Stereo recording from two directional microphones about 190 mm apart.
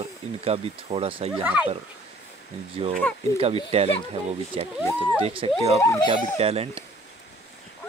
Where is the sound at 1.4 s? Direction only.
10° right (ahead or behind).